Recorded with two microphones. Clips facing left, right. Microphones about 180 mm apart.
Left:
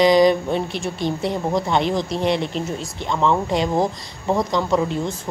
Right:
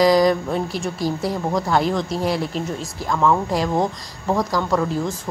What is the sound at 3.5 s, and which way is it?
Speech, centre (ahead or behind).